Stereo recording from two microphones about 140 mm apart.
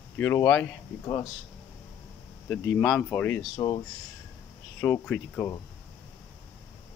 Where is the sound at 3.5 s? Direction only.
35° left (ahead or behind).